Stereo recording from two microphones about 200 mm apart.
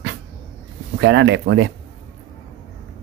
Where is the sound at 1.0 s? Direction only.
60° right (ahead or behind).